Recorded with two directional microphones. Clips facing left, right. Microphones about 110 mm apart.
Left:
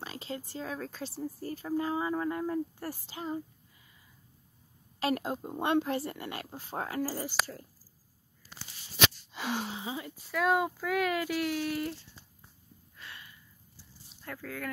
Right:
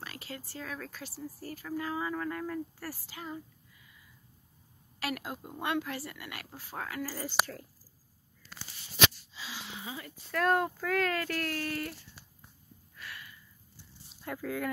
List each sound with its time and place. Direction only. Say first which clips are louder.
0.0 s speech: left 4 dB; 25° left (ahead or behind)
5.0 s speech: left 6 dB; 30° left (ahead or behind)
9.3 s a sound: left 11 dB; 55° left (ahead or behind)
9.8 s speech: left 5 dB; 20° left (ahead or behind)
10.3 s speech: even; 5° left (ahead or behind)
12.9 s a sound: right 2 dB; 25° left (ahead or behind)
14.2 s speech: right 5 dB; 15° right (ahead or behind)